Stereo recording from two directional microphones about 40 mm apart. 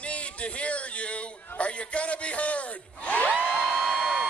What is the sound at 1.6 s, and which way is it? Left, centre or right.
Speech, left.